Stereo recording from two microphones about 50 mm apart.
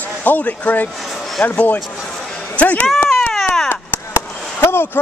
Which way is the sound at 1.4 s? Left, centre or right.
Centre.